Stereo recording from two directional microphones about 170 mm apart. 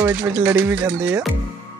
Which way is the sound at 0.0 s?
15° right (ahead or behind).